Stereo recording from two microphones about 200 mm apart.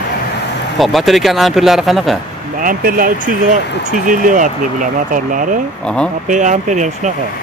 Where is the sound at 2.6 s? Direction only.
45° right (ahead or behind).